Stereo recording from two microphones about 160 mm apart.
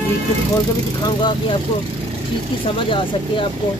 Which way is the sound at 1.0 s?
25° left (ahead or behind).